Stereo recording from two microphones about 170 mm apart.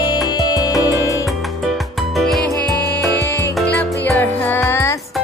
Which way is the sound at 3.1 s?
90° left.